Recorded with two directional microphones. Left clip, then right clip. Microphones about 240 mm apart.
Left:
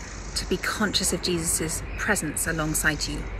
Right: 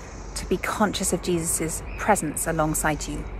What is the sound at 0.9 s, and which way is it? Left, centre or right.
Speech, right.